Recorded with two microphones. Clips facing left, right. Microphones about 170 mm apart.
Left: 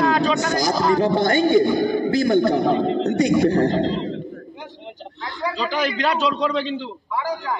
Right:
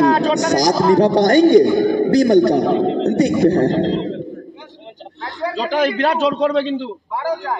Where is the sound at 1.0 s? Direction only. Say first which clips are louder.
Right 5 dB; 85° right.